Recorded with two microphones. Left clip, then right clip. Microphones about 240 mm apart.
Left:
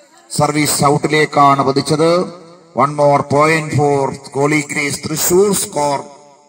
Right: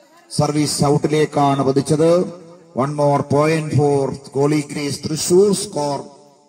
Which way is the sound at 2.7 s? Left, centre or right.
Centre.